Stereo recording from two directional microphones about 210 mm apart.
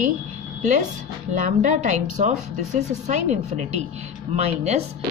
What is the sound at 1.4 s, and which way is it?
A woman's voice, 35° right (ahead or behind).